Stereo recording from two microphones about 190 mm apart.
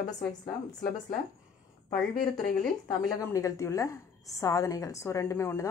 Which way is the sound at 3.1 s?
15° left (ahead or behind).